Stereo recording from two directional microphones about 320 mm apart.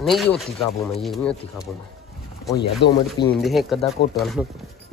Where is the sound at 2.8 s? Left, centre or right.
Left.